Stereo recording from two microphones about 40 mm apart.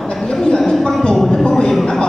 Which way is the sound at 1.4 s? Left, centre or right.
Centre.